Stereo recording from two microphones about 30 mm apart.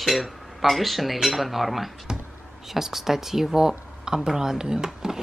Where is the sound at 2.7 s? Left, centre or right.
Centre.